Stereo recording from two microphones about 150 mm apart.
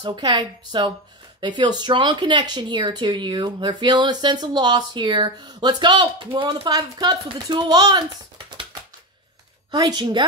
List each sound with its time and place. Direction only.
0.0 s a woman's voice: 30° right (ahead or behind)
9.7 s speech: 30° right (ahead or behind)